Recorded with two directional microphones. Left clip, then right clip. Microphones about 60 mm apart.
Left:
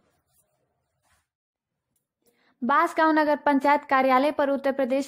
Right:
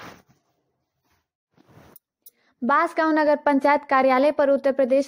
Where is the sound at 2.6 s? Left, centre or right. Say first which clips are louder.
Right 1 dB; centre.